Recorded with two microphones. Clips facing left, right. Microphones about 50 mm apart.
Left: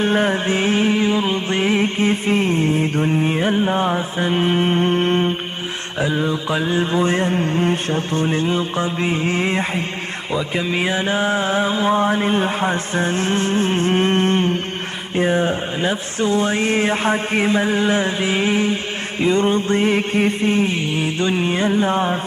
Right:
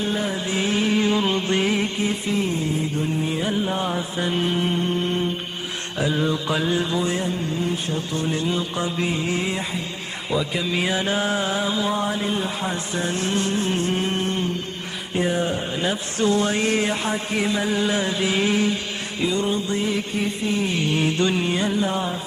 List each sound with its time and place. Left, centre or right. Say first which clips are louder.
0.0 s speech: left 7 dB; left
0.9 s mantra: left 2 dB; centre
1.5 s speech: left 3 dB; left
5.9 s speech: left 2 dB; centre; by 9.8 s left
10.5 s speech: left 3 dB; left
15.1 s speech: left 5 dB; left
20.8 s music: left 1 dB; centre; by 22.2 s left